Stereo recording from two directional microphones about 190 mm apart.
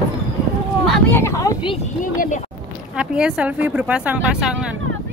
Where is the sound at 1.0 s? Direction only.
15° left (ahead or behind).